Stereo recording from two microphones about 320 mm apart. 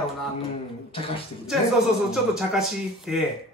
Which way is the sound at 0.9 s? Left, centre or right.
Centre.